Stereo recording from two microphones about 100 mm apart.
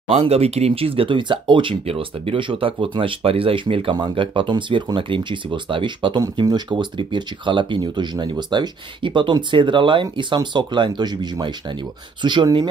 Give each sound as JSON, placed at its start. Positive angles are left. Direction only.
{"t": 0.1, "sound": "speech", "side_deg": -90}